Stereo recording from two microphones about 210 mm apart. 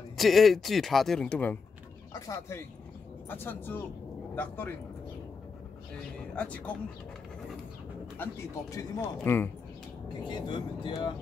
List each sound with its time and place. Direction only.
0.2 s speech: centre (ahead or behind)
6.3 s speech: 5° left (ahead or behind)
8.7 s speech: 15° left (ahead or behind)
10.2 s speech: 20° left (ahead or behind)